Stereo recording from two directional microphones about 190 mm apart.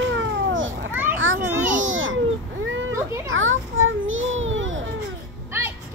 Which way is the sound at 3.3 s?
90° right.